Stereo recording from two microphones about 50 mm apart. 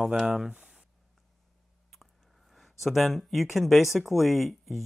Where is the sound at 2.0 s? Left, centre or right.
Centre.